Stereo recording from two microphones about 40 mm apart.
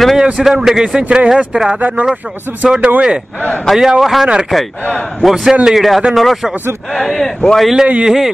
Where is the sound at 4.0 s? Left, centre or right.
Centre.